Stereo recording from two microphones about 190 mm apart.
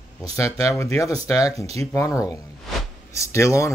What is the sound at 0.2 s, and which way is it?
Speech, 15° left (ahead or behind).